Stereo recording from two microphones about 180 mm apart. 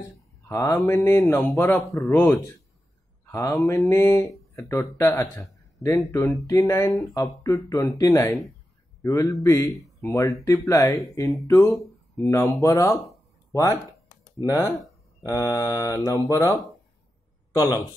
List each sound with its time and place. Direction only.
0.5 s speech: 20° left (ahead or behind)
13.5 s a sound: 15° left (ahead or behind)
15.2 s speech: 20° left (ahead or behind)